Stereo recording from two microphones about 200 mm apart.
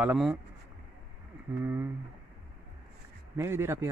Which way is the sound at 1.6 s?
10° right (ahead or behind).